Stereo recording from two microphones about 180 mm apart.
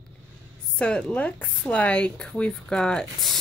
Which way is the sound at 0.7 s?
5° left (ahead or behind).